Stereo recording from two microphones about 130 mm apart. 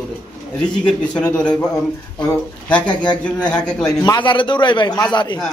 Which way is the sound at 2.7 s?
10° left (ahead or behind).